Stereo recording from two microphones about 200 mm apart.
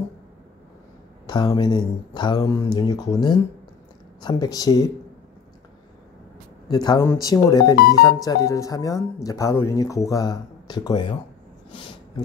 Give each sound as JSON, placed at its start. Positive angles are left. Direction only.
{"t": 1.2, "sound": "speech", "side_deg": 20}
{"t": 6.7, "sound": "speech", "side_deg": 20}